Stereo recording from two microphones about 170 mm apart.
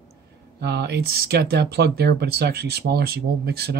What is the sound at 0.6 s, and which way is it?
Speech, 75° right (ahead or behind).